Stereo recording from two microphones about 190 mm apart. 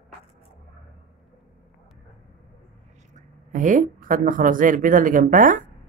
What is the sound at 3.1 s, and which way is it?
Speech, 40° right (ahead or behind).